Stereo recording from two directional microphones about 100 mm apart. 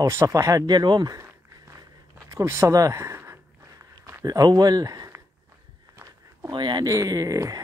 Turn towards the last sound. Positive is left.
turn(degrees=-35)  # may be behind; listen again after turning